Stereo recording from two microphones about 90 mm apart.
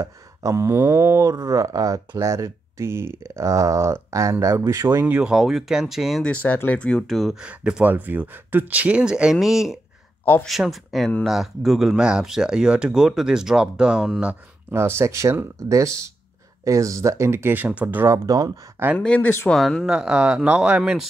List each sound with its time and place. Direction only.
0.0 s speech: 35° right (ahead or behind)
5.0 s speech: 10° right (ahead or behind)
6.2 s speech: 15° left (ahead or behind)
7.3 s speech: 10° right (ahead or behind)
7.9 s speech: 20° right (ahead or behind)
14.7 s speech: 30° right (ahead or behind)
18.0 s speech: 35° right (ahead or behind)
18.9 s speech: 15° left (ahead or behind)
19.8 s speech: 10° right (ahead or behind)